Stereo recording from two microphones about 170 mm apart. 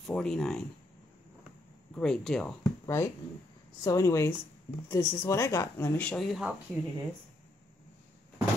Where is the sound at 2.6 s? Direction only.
15° left (ahead or behind); by 6.5 s centre (ahead or behind).